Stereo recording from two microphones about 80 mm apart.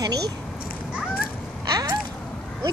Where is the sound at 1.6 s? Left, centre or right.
Right.